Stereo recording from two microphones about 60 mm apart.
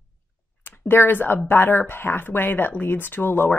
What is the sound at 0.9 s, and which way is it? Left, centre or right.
A woman's voice, left.